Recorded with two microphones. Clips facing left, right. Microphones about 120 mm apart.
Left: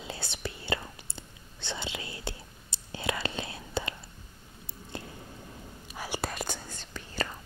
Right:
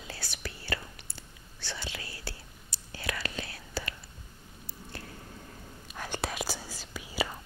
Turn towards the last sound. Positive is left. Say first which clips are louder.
# right 1 dB
turn(degrees=-10)  # may be behind; listen again after turning